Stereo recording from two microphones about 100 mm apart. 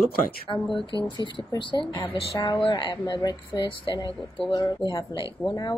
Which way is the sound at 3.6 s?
55° left (ahead or behind).